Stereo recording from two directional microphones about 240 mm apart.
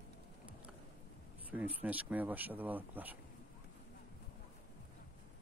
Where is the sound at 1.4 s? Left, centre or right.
Centre.